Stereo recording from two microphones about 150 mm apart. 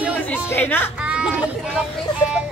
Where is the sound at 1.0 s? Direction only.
5° right (ahead or behind).